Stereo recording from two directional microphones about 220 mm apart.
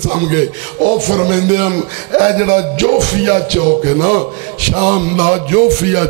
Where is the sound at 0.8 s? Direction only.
25° right (ahead or behind).